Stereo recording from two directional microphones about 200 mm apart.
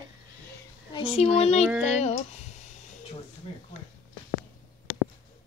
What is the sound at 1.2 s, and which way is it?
Speech, 30° left (ahead or behind).